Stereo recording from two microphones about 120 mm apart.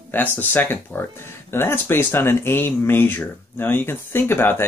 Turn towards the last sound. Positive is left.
turn(degrees=15)  # may be behind; listen again after turning